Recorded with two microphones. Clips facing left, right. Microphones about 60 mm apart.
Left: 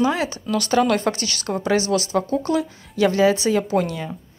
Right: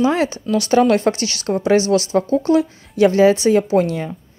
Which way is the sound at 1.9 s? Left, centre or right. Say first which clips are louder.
Right 5 dB; right.